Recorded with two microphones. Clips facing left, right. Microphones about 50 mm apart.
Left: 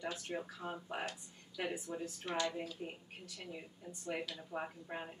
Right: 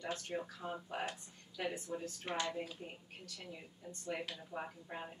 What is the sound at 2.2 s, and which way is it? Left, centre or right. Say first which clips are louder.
Speech: left 2 dB; right.